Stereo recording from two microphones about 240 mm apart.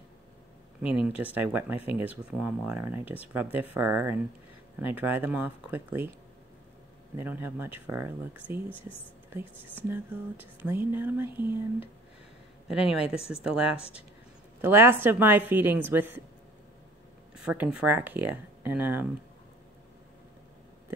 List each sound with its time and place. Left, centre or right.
0.8 s speech: centre
7.2 s speech: centre
13.7 s speech: left
14.6 s speech: centre
17.4 s speech: centre